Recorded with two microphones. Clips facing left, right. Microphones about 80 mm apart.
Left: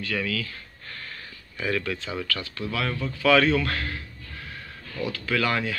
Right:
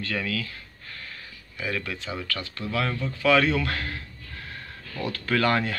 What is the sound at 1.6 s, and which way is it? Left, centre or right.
Speech, centre.